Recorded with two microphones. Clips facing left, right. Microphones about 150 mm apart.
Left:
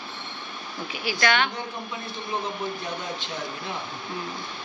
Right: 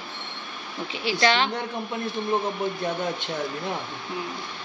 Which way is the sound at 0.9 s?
30° right (ahead or behind).